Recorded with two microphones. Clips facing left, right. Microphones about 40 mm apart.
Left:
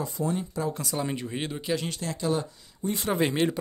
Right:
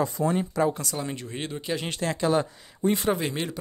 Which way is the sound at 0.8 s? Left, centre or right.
Centre.